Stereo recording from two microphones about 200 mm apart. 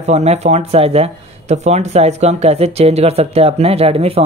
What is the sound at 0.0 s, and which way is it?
Speech, 35° right (ahead or behind).